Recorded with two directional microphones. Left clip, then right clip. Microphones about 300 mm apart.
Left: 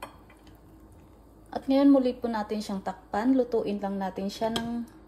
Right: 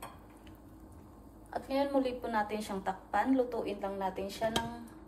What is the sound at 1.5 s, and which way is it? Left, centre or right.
A woman's voice, left.